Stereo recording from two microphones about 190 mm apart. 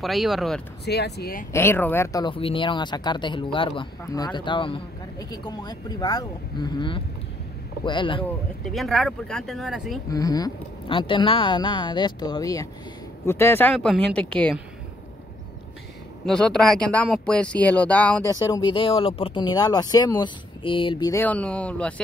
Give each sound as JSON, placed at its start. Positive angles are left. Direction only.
{"t": 0.0, "sound": "speech", "side_deg": 0}
{"t": 0.8, "sound": "speech", "side_deg": 60}
{"t": 1.5, "sound": "speech", "side_deg": 10}
{"t": 2.2, "sound": "speech", "side_deg": 25}
{"t": 8.6, "sound": "speech", "side_deg": 0}
{"t": 10.0, "sound": "speech", "side_deg": 20}
{"t": 16.3, "sound": "speech", "side_deg": 5}
{"t": 18.3, "sound": "speech", "side_deg": 20}